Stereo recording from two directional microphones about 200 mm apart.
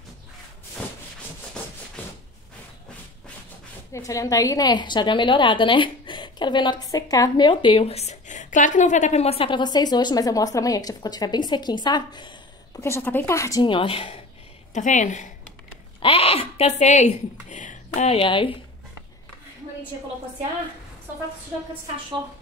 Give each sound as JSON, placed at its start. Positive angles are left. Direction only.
{"t": 2.0, "sound": "a sound", "side_deg": 5}
{"t": 3.9, "sound": "a woman's voice", "side_deg": 15}
{"t": 14.7, "sound": "speech", "side_deg": 35}